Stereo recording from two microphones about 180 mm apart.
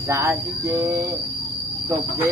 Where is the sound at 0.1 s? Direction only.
15° right (ahead or behind).